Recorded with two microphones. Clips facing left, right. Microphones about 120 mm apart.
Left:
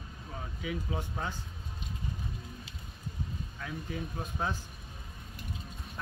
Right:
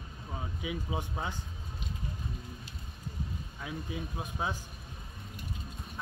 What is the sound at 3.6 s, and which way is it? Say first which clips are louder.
Speech: even; 10° right (ahead or behind).